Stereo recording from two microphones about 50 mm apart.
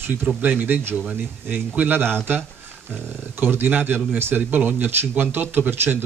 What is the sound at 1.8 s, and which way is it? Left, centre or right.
Speech, right.